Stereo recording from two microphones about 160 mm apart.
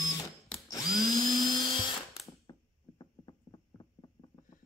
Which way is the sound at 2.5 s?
30° left (ahead or behind).